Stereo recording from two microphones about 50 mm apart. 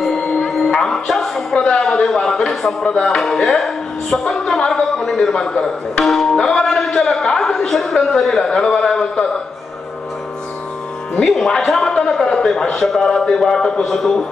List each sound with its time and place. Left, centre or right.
0.0 s music: centre
1.6 s speech: centre
11.2 s speech: centre